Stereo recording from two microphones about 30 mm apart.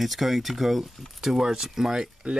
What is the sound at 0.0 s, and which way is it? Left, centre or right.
Speech, centre.